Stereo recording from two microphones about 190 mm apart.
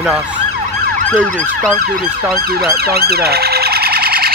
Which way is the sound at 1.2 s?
45° right (ahead or behind).